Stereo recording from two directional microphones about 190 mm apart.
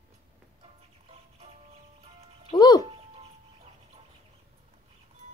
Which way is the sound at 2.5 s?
20° left (ahead or behind).